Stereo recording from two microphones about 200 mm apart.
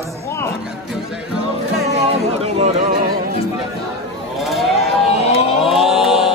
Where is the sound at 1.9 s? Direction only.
35° right (ahead or behind).